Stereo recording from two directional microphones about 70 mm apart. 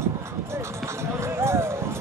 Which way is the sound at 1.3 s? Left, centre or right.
Right.